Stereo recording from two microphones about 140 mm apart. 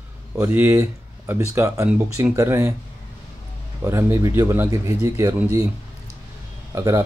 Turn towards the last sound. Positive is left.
turn(degrees=-20)  # may be behind; listen again after turning